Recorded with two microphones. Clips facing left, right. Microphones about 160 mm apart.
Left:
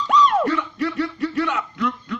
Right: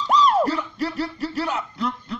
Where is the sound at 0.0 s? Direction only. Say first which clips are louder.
Left 1 dB; 35° right (ahead or behind).